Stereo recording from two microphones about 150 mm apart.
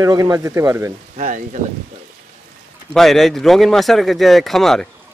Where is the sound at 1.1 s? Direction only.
60° right (ahead or behind).